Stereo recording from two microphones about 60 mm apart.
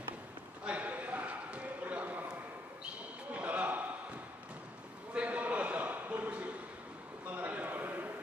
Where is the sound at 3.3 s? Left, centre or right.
Right.